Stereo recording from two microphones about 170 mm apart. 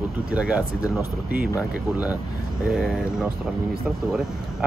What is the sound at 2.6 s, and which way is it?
Speech, 5° right (ahead or behind).